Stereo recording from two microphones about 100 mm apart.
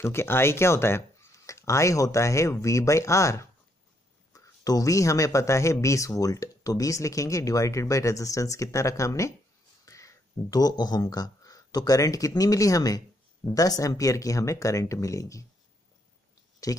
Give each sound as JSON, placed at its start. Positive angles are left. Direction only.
{"t": 0.0, "sound": "speech", "side_deg": 25}
{"t": 16.6, "sound": "speech", "side_deg": 35}